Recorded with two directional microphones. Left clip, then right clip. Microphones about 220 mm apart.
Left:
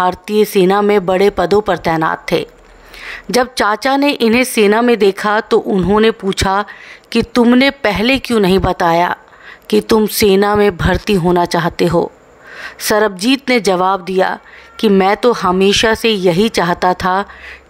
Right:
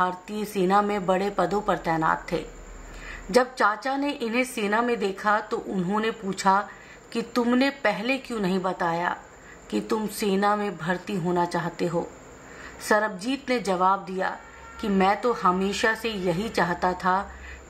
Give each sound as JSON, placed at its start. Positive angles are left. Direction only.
{"t": 0.0, "sound": "a woman's voice", "side_deg": 45}